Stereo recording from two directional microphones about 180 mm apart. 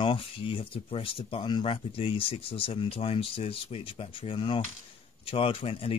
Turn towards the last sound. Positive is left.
turn(degrees=30)  # may be behind; listen again after turning